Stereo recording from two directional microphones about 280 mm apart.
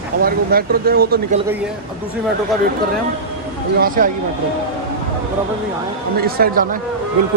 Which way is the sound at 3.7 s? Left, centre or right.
Right.